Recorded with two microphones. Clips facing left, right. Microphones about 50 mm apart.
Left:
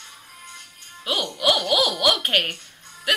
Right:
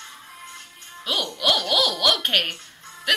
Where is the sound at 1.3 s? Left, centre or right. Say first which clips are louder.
Left 2 dB; centre.